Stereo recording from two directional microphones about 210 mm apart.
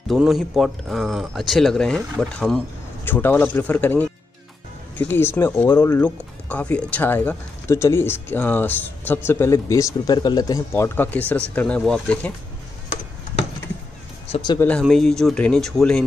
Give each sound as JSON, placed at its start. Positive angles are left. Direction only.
{"t": 0.1, "sound": "speech", "side_deg": 0}
{"t": 14.3, "sound": "speech", "side_deg": 20}
{"t": 14.7, "sound": "speech", "side_deg": 0}